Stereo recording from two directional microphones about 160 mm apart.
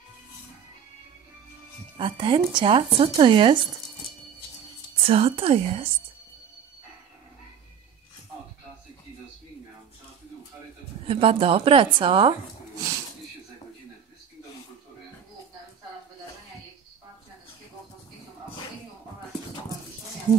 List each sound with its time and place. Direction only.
2.0 s speech: 30° right (ahead or behind)
5.0 s speech: 35° right (ahead or behind)
11.1 s speech: 35° right (ahead or behind)